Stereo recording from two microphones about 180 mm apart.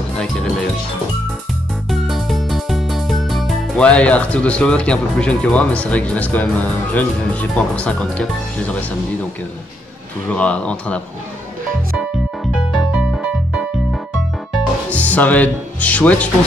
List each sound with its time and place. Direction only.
1.9 s music: centre (ahead or behind)
10.2 s speech: 5° left (ahead or behind)
12.0 s music: 5° right (ahead or behind)
14.9 s speech: 10° left (ahead or behind)